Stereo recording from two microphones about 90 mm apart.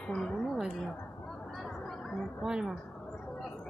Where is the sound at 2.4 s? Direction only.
5° right (ahead or behind).